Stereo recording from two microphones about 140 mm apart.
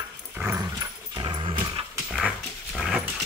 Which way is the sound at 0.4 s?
15° right (ahead or behind).